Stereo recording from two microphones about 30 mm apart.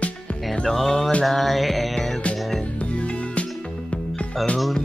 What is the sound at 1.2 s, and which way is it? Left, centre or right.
Music, centre.